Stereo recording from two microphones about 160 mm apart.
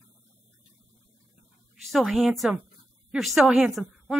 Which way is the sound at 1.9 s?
Centre (ahead or behind).